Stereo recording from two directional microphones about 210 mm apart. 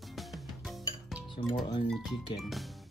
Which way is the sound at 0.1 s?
Centre (ahead or behind).